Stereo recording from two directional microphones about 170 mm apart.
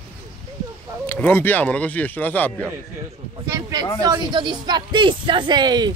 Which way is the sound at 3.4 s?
20° right (ahead or behind).